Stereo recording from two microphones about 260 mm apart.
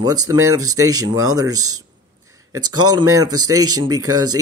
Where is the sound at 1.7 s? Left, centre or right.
Centre.